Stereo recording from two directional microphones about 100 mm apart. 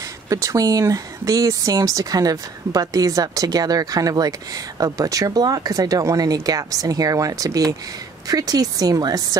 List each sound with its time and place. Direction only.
0.3 s speech: 35° right (ahead or behind)